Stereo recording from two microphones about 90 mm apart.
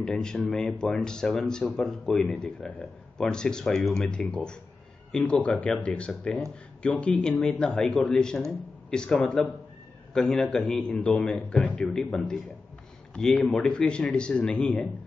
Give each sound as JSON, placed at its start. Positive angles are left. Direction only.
{"t": 0.0, "sound": "speech", "side_deg": 5}
{"t": 12.1, "sound": "speech", "side_deg": 5}
{"t": 13.1, "sound": "speech", "side_deg": 15}